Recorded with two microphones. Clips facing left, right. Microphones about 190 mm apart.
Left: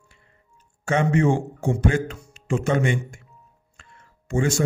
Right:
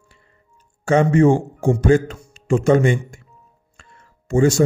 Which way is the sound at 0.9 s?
40° right (ahead or behind).